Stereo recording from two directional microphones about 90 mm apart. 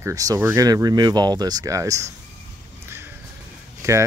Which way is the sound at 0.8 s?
50° right (ahead or behind).